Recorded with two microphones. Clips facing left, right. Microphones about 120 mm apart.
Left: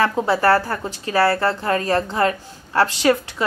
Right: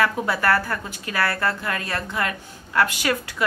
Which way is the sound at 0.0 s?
30° left (ahead or behind).